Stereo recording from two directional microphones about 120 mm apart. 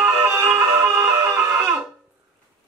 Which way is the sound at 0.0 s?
20° right (ahead or behind).